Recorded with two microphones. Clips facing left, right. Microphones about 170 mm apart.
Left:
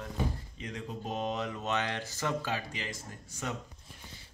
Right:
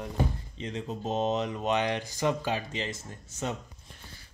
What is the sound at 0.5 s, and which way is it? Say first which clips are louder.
Speech: right 5 dB; 25° right (ahead or behind).